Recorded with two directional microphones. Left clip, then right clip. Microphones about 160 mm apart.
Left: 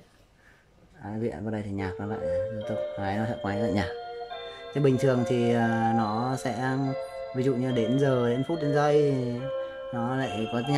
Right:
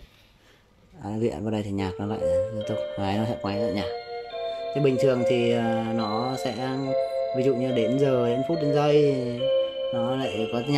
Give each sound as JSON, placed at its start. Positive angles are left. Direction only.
{"t": 1.1, "sound": "speech", "side_deg": -15}